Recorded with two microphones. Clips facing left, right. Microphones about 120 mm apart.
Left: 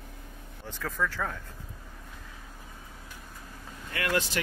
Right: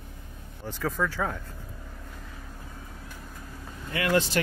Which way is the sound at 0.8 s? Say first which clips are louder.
Right 3 dB; 15° right (ahead or behind).